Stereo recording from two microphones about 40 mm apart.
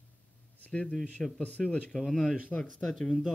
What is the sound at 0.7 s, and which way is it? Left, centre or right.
Speech, left.